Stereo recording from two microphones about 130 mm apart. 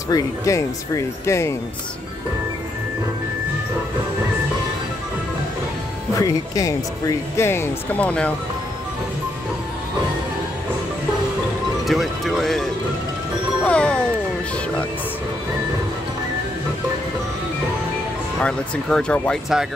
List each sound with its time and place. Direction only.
0.1 s speech: 25° left (ahead or behind)
6.1 s speech: 25° left (ahead or behind); by 8.3 s 10° left (ahead or behind)
11.9 s speech: centre (ahead or behind)
13.7 s music: 10° left (ahead or behind)
18.4 s speech: 5° left (ahead or behind)